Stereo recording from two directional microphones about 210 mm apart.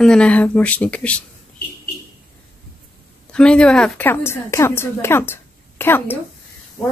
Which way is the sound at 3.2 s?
5° left (ahead or behind).